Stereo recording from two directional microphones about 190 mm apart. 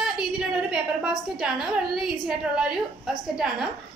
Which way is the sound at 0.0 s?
5° right (ahead or behind).